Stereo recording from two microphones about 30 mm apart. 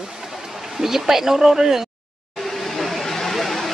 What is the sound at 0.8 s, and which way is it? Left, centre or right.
Speech, centre.